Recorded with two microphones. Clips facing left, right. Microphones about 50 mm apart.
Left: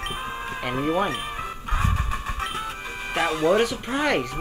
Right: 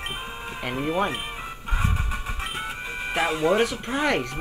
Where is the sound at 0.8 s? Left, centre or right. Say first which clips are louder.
Left 1 dB; centre.